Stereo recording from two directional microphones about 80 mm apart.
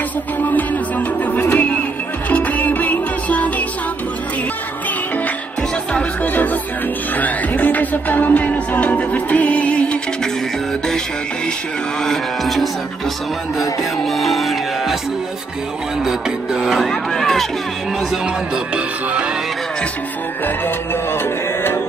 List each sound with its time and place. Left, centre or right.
0.5 s music: left
6.2 s music: left
12.0 s a sound: centre
13.6 s music: centre
16.0 s music: centre
20.4 s music: left